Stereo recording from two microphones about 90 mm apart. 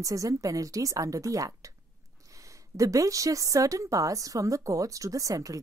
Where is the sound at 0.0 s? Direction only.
40° right (ahead or behind).